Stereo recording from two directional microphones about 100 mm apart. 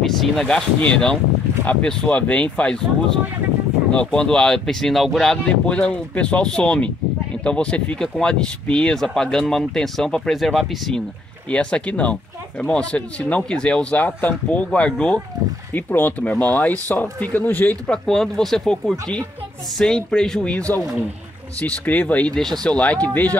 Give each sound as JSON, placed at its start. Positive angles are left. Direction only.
{"t": 0.0, "sound": "speech", "side_deg": 0}
{"t": 3.9, "sound": "speech", "side_deg": 10}
{"t": 11.5, "sound": "speech", "side_deg": 10}
{"t": 17.9, "sound": "speech", "side_deg": 5}